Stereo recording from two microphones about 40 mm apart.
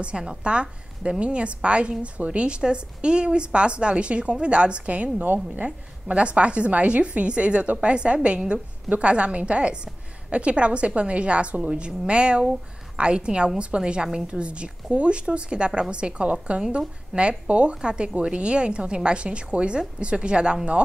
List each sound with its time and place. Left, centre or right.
0.4 s a woman's voice: right
5.2 s a woman's voice: right
6.0 s a woman's voice: right